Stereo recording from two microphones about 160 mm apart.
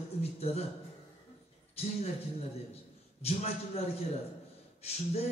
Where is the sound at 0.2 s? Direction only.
40° left (ahead or behind).